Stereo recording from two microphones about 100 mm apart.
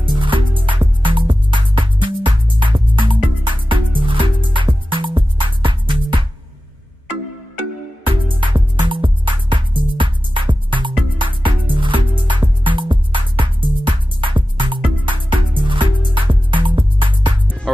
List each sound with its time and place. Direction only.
0.0 s music: 55° right (ahead or behind)
8.1 s music: 55° right (ahead or behind)